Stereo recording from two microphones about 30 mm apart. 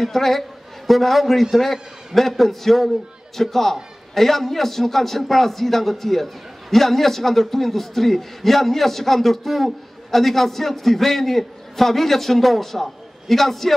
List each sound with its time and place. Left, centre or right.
0.0 s a man's voice: centre